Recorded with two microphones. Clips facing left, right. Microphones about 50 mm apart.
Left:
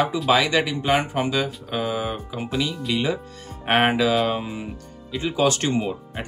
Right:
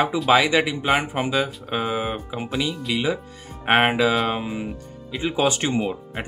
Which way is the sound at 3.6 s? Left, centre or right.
Centre.